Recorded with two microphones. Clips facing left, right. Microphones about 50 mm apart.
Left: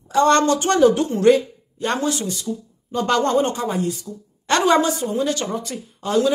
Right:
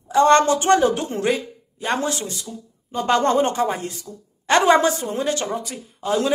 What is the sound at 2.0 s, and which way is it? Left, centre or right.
Speech, right.